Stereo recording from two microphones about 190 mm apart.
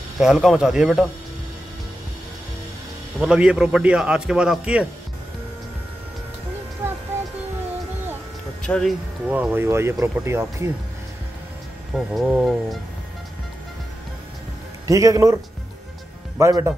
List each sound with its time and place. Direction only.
0.2 s a man's voice: centre (ahead or behind)
3.2 s a man's voice: 5° right (ahead or behind)
8.6 s speech: 5° left (ahead or behind)
9.3 s speech: 10° right (ahead or behind)
11.9 s a man's voice: centre (ahead or behind)
14.9 s speech: 15° right (ahead or behind)
16.3 s speech: 15° right (ahead or behind)